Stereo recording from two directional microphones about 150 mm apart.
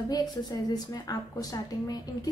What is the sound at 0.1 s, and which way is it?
A woman's voice, 25° left (ahead or behind).